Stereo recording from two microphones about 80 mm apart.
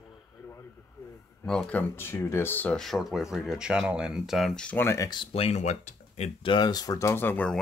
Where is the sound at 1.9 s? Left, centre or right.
Left.